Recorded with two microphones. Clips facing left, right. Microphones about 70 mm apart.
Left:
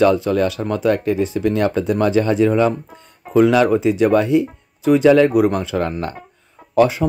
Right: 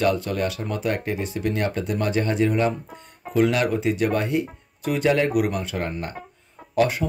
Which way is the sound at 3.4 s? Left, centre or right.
Left.